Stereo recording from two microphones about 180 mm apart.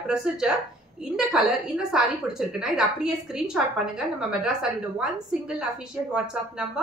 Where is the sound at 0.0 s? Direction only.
5° right (ahead or behind).